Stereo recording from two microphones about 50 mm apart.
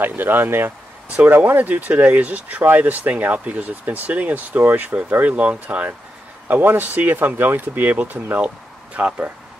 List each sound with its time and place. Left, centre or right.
0.2 s speech: right
1.5 s speech: right
6.5 s speech: right
8.0 s speech: right